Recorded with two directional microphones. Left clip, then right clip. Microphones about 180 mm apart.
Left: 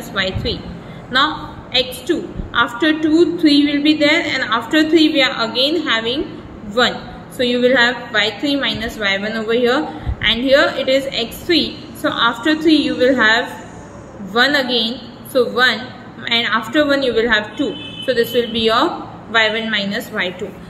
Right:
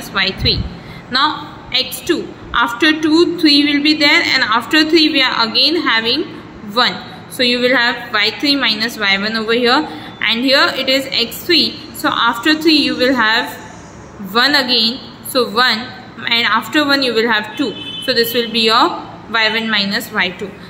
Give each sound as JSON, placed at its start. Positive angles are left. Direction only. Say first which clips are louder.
{"t": 0.1, "sound": "a woman's voice", "louder": "right 5 dB", "side_deg": -15}